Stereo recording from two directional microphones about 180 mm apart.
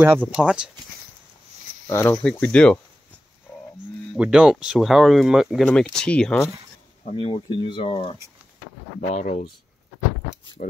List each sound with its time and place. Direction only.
0.0 s speech: 10° right (ahead or behind)
1.9 s speech: 10° left (ahead or behind)
4.1 s speech: 5° right (ahead or behind)
7.1 s speech: 35° left (ahead or behind)
9.0 s speech: 45° left (ahead or behind)
10.6 s speech: 45° left (ahead or behind)